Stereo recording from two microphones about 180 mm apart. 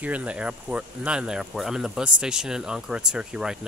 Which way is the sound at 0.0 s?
5° right (ahead or behind).